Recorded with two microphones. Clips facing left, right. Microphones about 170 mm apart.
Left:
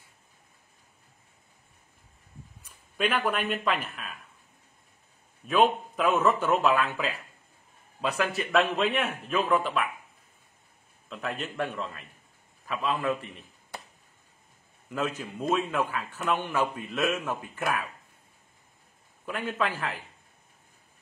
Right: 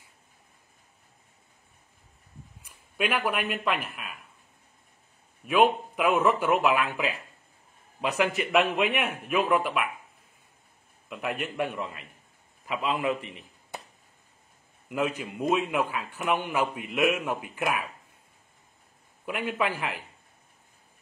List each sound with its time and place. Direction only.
2.6 s a man's voice: 10° right (ahead or behind)
5.4 s a man's voice: 10° right (ahead or behind)
11.1 s a man's voice: 10° right (ahead or behind)
14.9 s a man's voice: 15° right (ahead or behind)
19.2 s a man's voice: 15° right (ahead or behind)